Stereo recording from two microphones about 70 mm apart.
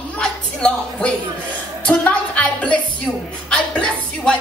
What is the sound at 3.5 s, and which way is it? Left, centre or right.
Music, centre.